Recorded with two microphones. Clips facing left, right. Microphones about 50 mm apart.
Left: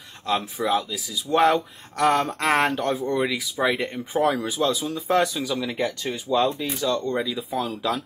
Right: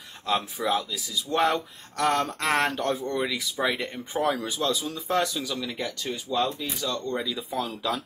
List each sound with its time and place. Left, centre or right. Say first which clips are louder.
0.3 s speech: left 3 dB; centre